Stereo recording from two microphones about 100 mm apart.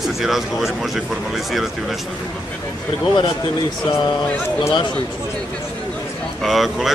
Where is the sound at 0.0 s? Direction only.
5° right (ahead or behind).